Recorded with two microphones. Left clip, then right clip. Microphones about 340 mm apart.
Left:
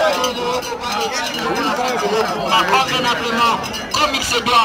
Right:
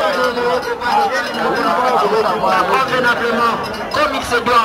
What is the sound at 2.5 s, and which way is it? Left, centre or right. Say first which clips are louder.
A man's voice: left 4 dB; centre.